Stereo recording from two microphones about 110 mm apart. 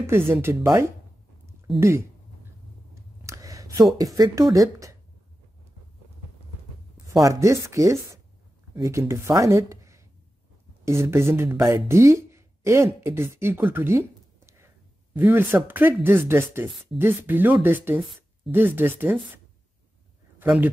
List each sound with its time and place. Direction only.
0.0 s speech: 20° right (ahead or behind)
2.9 s a sound: 30° right (ahead or behind)
4.0 s speech: 30° right (ahead or behind)
7.1 s speech: 30° right (ahead or behind)
20.4 s a man's voice: 10° right (ahead or behind)